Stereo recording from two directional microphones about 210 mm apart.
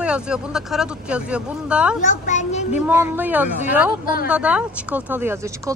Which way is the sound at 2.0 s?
35° left (ahead or behind).